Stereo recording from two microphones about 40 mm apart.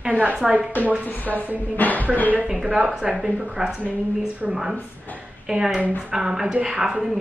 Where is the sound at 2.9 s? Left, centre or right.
Right.